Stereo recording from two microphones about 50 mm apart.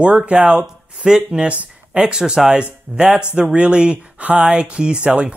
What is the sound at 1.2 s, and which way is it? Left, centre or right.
Speech, right.